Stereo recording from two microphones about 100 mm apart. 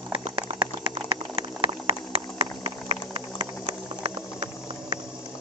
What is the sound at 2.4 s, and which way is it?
Clip-clop, 90° right.